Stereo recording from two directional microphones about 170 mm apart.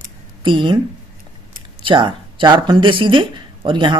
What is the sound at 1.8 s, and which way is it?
Speech, 30° right (ahead or behind).